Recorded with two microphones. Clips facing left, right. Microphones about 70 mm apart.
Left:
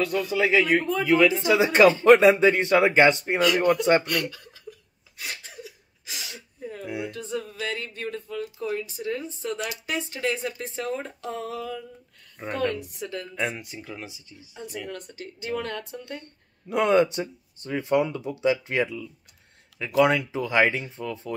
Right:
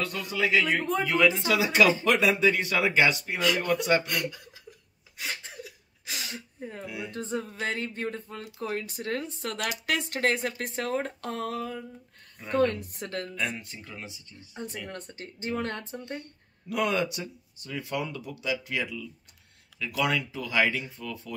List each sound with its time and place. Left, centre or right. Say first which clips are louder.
0.0 s speech: left 5 dB; left
1.7 s speech: left 8 dB; left
4.2 s speech: left 2 dB; centre
5.2 s a sound: right 1 dB; right
5.6 s hiccup: left 2 dB; right
7.1 s a sound: left 1 dB; right
12.7 s a sound: left 2 dB; right
13.4 s speech: left 3 dB; centre
14.4 s a sound: even; right
14.9 s speech: left 3 dB; right
16.2 s speech: right 2 dB; left
17.9 s speech: left 11 dB; left